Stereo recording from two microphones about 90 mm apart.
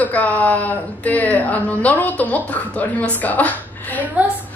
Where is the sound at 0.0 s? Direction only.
15° left (ahead or behind).